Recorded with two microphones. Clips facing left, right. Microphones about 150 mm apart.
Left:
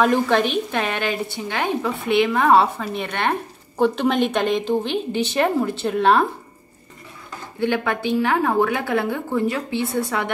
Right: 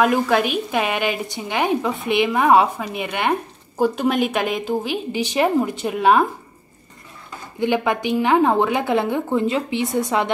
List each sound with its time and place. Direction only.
0.0 s speech: 5° right (ahead or behind)
7.6 s a woman's voice: 15° right (ahead or behind)